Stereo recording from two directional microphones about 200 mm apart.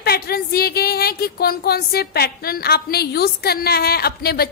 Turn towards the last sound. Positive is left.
turn(degrees=50)  # may be behind; listen again after turning